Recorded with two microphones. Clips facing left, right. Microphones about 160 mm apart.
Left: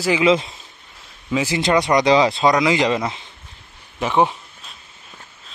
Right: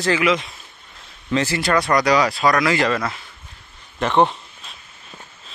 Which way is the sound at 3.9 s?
10° left (ahead or behind).